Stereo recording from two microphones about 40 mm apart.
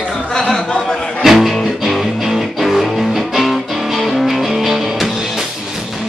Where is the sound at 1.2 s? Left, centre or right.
Centre.